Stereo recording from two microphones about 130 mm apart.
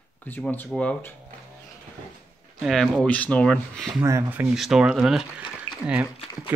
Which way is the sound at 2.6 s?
Centre (ahead or behind).